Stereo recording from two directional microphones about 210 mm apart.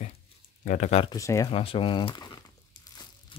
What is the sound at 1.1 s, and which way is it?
Speech, 15° left (ahead or behind).